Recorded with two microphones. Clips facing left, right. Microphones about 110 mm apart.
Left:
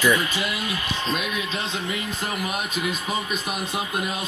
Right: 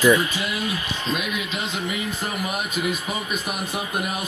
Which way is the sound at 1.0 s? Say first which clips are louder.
Right 1 dB; 25° left (ahead or behind).